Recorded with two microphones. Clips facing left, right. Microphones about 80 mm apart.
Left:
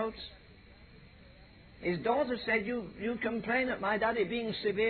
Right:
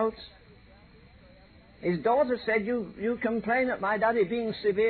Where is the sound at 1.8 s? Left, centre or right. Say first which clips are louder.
Right 6 dB; right.